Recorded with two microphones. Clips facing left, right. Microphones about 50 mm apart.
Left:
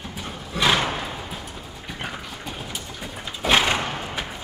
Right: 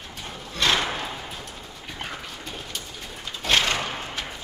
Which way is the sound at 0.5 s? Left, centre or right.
Centre.